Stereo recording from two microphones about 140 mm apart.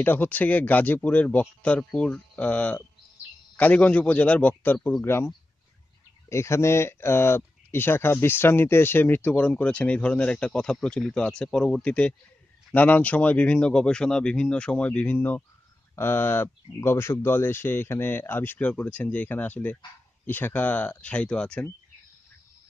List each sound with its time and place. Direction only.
0.0 s speech: 15° left (ahead or behind)